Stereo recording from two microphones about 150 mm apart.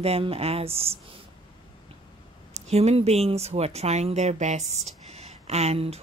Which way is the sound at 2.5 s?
45° right (ahead or behind).